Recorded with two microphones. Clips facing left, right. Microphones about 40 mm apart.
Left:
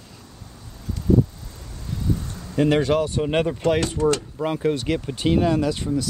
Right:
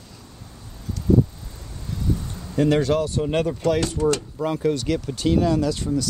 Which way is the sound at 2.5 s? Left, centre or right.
Left.